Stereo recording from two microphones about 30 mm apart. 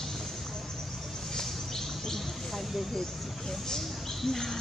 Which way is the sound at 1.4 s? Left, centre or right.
Centre.